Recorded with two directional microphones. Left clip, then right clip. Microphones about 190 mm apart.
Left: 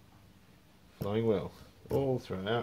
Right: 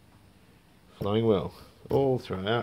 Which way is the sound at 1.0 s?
35° right (ahead or behind).